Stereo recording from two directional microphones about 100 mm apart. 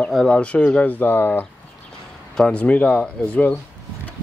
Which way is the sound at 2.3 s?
10° left (ahead or behind).